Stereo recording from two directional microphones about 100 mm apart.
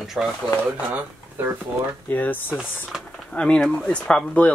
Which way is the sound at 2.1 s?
20° left (ahead or behind).